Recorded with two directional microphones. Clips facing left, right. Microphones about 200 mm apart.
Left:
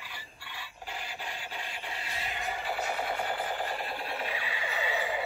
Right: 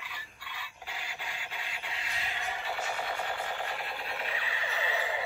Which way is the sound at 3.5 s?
30° left (ahead or behind).